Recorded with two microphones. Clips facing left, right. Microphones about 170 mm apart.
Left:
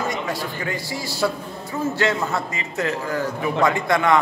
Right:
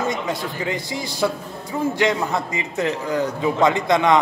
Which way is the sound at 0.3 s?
20° right (ahead or behind).